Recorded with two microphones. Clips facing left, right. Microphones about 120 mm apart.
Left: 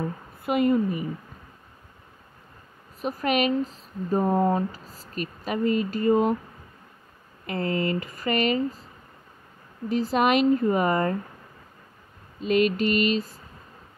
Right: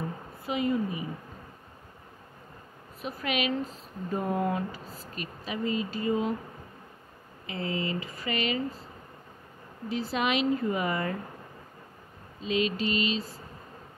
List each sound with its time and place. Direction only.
0.5 s mantra: 55° left (ahead or behind)
3.0 s speech: 40° left (ahead or behind)
7.4 s speech: 50° left (ahead or behind)
9.8 s speech: 45° left (ahead or behind)
12.4 s mantra: 55° left (ahead or behind)